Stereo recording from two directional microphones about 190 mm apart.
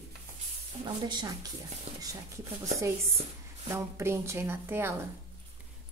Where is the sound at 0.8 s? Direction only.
20° right (ahead or behind).